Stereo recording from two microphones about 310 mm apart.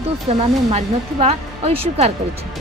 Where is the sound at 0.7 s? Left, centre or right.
Centre.